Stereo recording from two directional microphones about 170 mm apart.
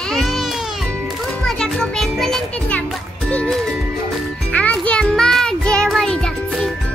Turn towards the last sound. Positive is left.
turn(degrees=5)  # may be behind; listen again after turning